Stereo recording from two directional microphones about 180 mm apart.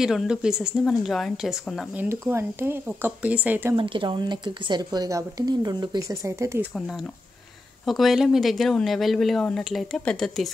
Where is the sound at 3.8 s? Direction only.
30° right (ahead or behind).